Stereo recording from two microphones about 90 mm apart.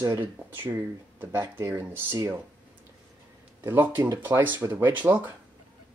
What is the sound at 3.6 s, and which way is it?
Speech, 25° right (ahead or behind).